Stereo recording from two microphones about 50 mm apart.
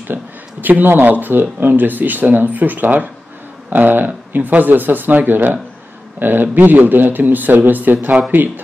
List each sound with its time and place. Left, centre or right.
0.1 s speech: right